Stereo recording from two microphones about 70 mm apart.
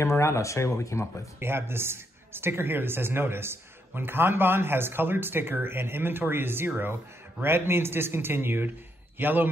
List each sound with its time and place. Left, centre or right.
0.0 s speech: left
1.4 s a man's voice: right